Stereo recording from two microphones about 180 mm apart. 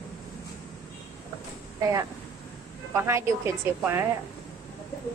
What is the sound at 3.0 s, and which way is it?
A woman's voice, 15° right (ahead or behind).